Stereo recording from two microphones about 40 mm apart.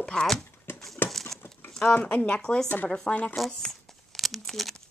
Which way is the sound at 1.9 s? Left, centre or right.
Left.